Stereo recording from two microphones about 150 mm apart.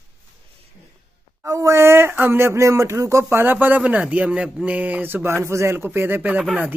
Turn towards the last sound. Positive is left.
turn(degrees=0)  # may be behind; listen again after turning